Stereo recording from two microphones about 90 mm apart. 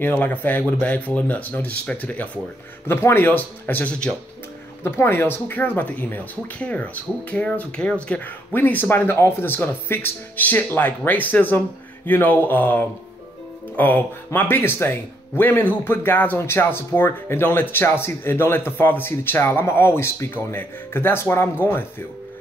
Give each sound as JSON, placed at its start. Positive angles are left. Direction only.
{"t": 0.0, "sound": "speech", "side_deg": 20}